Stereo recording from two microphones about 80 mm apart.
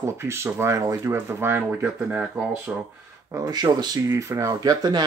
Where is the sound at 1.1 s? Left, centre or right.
Right.